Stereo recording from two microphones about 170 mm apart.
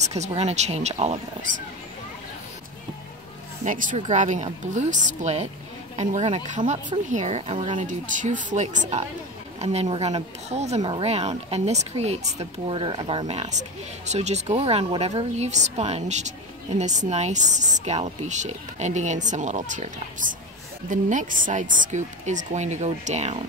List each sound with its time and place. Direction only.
0.0 s speech: 40° right (ahead or behind)
3.6 s speech: 50° right (ahead or behind)
7.7 s speech: 50° right (ahead or behind)